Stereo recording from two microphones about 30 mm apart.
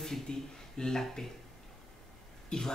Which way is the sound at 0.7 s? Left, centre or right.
Centre.